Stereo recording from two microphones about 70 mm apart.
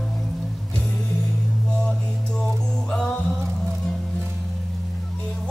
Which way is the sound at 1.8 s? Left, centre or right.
Centre.